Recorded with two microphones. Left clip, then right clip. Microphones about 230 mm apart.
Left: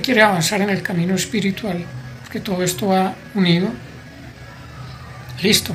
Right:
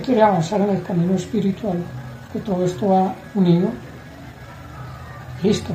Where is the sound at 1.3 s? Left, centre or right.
Centre.